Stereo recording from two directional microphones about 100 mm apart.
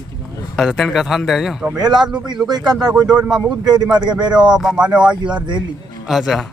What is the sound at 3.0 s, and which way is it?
Speech, 10° right (ahead or behind).